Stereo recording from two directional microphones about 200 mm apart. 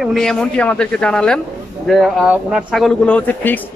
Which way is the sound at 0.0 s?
Centre (ahead or behind).